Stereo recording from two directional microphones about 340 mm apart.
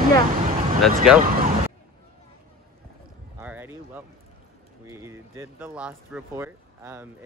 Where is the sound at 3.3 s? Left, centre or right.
Centre.